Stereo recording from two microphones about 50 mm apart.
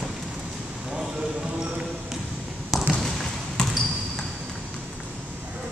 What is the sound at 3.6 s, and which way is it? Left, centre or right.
Basketball bounce, centre.